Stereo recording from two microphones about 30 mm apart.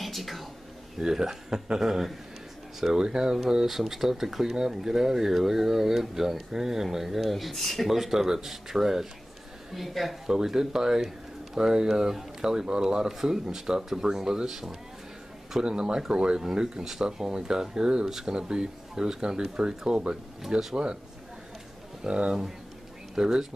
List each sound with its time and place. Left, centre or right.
0.0 s a sound: centre
1.0 s speech: centre
3.0 s speech: right; by 10.1 s centre
10.2 s speech: centre
13.2 s speech: centre
15.6 s speech: right
22.0 s speech: right